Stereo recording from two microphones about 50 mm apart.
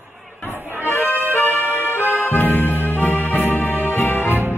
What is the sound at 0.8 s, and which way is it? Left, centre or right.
Music, left.